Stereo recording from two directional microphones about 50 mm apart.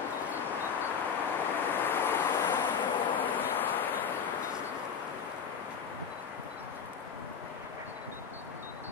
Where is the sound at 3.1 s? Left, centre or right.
Left.